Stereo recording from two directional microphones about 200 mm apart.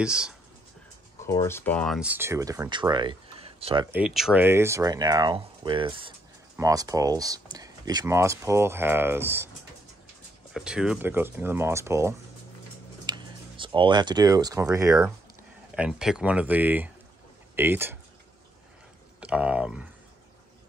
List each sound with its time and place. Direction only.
0.0 s speech: 5° right (ahead or behind)
1.2 s speech: 15° left (ahead or behind); by 3.8 s 30° right (ahead or behind)
3.9 s speech: 5° right (ahead or behind)
10.5 s speech: 5° right (ahead or behind)
15.7 s speech: 5° right (ahead or behind)
19.1 s speech: 5° right (ahead or behind)